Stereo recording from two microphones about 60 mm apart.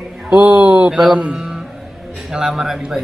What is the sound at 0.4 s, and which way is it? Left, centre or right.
A man's voice, right.